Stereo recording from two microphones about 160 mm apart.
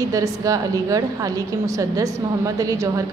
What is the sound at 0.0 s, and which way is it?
A woman's voice, 20° right (ahead or behind).